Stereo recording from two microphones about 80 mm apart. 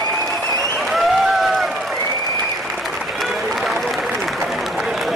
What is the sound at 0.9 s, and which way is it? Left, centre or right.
Applause, centre.